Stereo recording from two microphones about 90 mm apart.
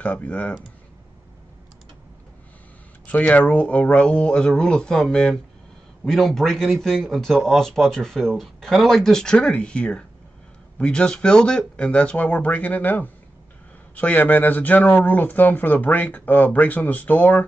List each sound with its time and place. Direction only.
0.0 s speech: 15° left (ahead or behind)
3.1 s speech: 15° left (ahead or behind)